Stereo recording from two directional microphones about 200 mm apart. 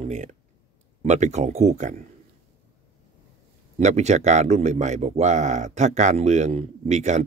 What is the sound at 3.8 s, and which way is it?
Speech, 35° right (ahead or behind).